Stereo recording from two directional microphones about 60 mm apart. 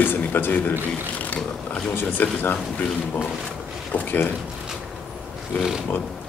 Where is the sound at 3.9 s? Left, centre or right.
Left.